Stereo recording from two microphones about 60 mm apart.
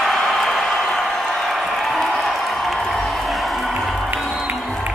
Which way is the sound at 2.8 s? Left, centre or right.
Centre.